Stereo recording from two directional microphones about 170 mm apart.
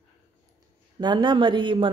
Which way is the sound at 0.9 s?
30° right (ahead or behind).